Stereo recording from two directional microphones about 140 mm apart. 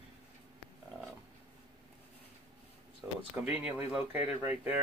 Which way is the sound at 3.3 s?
10° right (ahead or behind).